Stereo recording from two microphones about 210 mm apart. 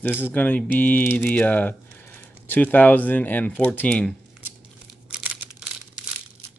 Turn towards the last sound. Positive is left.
turn(degrees=-5)  # may be behind; listen again after turning